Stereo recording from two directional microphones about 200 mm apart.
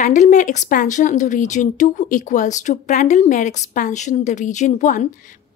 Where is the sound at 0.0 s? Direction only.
35° left (ahead or behind).